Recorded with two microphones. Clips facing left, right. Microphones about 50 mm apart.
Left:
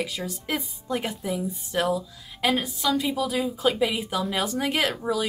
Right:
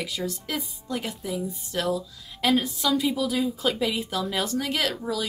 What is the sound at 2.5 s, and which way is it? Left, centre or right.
Speech, centre.